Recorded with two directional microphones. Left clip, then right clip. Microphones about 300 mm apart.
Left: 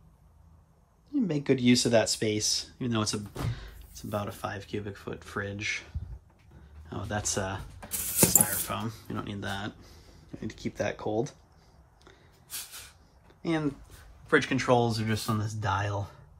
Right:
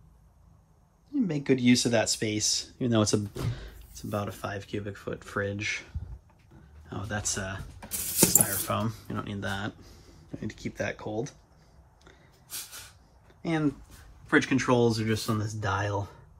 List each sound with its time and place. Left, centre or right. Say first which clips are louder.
1.1 s speech: even; centre
13.4 s speech: right 1 dB; centre